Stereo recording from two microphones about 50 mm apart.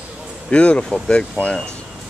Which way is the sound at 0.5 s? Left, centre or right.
Left.